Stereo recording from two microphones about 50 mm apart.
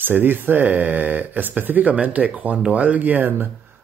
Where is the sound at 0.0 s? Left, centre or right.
Right.